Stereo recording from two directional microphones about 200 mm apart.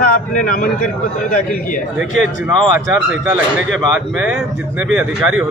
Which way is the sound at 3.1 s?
5° right (ahead or behind).